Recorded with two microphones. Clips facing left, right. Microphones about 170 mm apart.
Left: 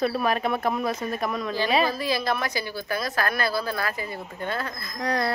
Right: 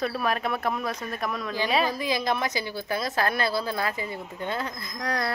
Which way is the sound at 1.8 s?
15° right (ahead or behind).